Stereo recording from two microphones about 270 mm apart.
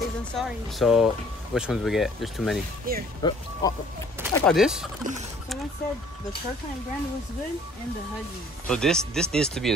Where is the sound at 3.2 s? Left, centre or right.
Centre.